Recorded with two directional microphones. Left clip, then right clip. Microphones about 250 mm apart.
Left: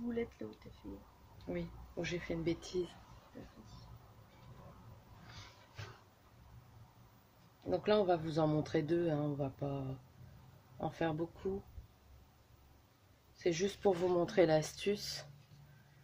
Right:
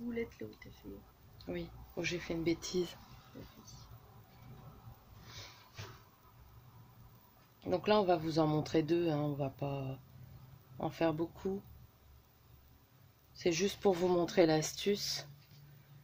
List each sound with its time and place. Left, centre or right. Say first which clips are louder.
1.5 s speech: even; centre
7.6 s speech: right 2 dB; centre
13.4 s speech: right 2 dB; centre